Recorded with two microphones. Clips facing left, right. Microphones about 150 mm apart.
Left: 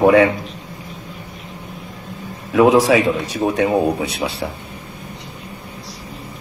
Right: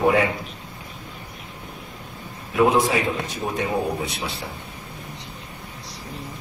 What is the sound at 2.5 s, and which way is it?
A man's voice, 90° left.